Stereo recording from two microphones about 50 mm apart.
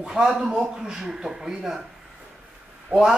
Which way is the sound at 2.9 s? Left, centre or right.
Right.